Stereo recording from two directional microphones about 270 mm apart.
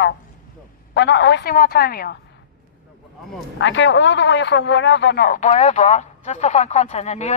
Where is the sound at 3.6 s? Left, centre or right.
Left.